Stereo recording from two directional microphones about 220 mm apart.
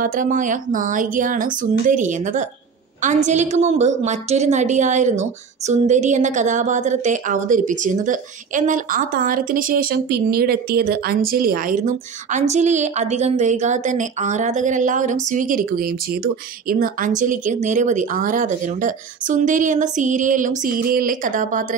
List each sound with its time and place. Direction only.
0.0 s a woman's voice: 40° right (ahead or behind)